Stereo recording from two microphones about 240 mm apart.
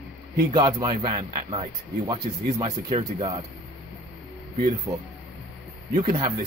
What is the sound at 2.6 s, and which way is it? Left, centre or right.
Speech, right.